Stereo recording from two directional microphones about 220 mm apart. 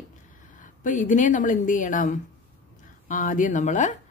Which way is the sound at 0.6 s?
35° left (ahead or behind).